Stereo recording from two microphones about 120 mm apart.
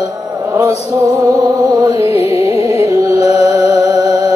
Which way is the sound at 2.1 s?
55° left (ahead or behind).